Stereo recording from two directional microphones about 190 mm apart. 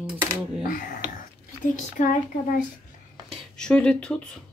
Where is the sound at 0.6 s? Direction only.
45° left (ahead or behind).